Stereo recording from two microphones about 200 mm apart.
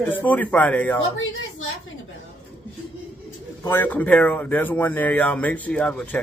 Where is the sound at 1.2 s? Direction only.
75° left (ahead or behind).